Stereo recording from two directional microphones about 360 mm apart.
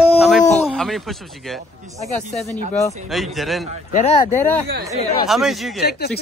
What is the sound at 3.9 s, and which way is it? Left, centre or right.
Speech, centre.